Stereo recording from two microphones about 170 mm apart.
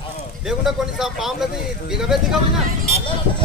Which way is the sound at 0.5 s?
Centre (ahead or behind).